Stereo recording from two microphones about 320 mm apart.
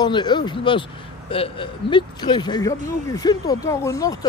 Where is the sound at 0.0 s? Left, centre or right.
Centre.